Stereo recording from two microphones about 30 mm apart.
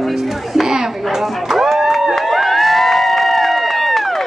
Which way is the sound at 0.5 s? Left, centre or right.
Centre.